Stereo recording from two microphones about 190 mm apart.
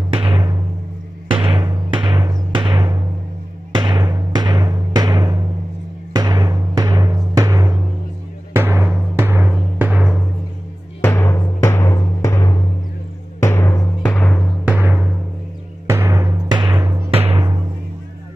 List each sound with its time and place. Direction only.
0.1 s music: 25° right (ahead or behind)
3.7 s timpani: 25° right (ahead or behind); by 10.2 s 5° right (ahead or behind)
11.0 s timpani: 15° left (ahead or behind)
14.6 s music: 10° right (ahead or behind)
15.9 s timpani: 15° right (ahead or behind)
17.1 s timpani: 30° right (ahead or behind)